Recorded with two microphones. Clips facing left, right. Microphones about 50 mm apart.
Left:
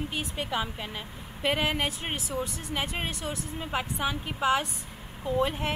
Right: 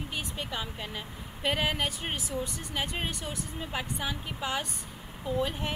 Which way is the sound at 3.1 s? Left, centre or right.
Centre.